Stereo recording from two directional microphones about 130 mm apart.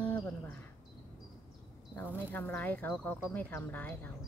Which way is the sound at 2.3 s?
10° left (ahead or behind).